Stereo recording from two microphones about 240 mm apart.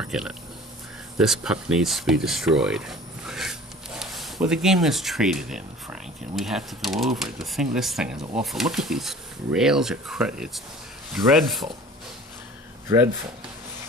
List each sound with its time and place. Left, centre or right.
0.0 s speech: centre
12.8 s speech: centre